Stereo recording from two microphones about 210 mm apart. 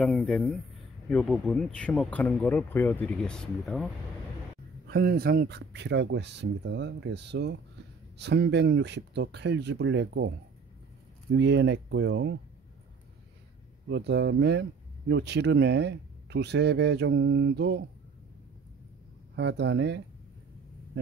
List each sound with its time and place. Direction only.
0.0 s speech: centre (ahead or behind)
4.8 s speech: 50° right (ahead or behind)
11.3 s speech: 55° right (ahead or behind)
13.8 s speech: 55° right (ahead or behind)
19.3 s speech: 55° right (ahead or behind)